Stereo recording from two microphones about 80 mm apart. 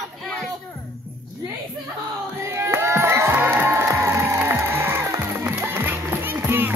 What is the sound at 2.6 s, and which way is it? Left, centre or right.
Music, right.